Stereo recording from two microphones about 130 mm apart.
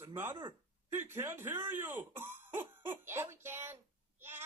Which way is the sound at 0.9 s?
15° right (ahead or behind).